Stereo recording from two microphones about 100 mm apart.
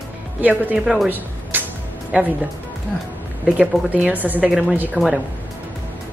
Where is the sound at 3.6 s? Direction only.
15° right (ahead or behind).